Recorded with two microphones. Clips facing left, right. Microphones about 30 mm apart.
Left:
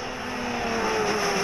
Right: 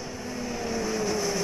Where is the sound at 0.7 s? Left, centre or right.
Left.